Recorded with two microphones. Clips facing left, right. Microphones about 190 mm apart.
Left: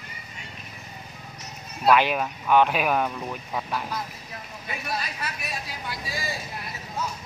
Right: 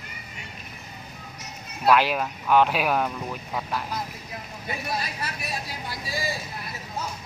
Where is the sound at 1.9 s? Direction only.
Centre (ahead or behind).